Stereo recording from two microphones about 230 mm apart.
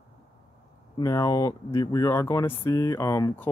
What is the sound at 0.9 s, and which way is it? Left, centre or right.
Speech, centre.